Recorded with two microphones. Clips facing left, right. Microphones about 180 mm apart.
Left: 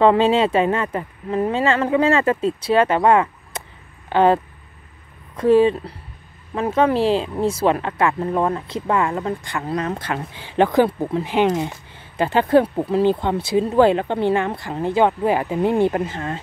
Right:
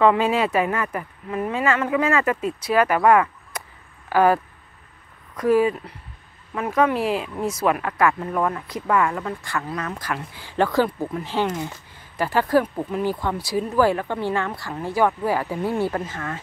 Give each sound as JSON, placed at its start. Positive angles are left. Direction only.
{"t": 0.0, "sound": "speech", "side_deg": 30}